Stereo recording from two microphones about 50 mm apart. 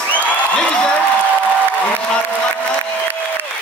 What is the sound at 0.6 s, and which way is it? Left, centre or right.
Applause, centre.